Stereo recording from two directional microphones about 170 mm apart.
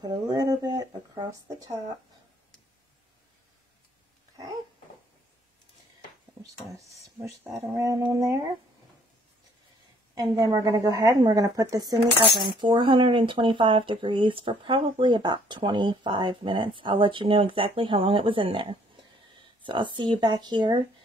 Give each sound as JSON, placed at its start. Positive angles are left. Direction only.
{"t": 0.0, "sound": "speech", "side_deg": -25}
{"t": 7.7, "sound": "speech", "side_deg": -20}
{"t": 10.1, "sound": "speech", "side_deg": -20}